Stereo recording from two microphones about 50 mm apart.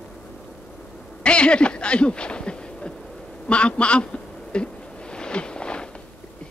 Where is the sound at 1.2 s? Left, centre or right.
Left.